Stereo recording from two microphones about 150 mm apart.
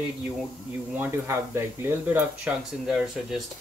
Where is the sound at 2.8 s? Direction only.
5° right (ahead or behind).